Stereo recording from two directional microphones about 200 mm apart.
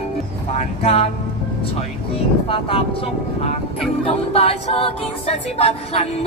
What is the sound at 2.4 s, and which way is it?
A capella, 25° left (ahead or behind).